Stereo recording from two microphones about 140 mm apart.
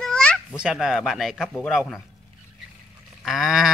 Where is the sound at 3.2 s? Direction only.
Centre (ahead or behind).